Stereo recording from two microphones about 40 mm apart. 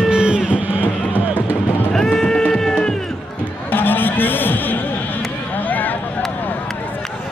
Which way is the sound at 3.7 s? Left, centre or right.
Left.